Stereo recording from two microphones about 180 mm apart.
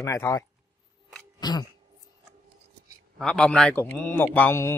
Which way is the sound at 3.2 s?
5° left (ahead or behind).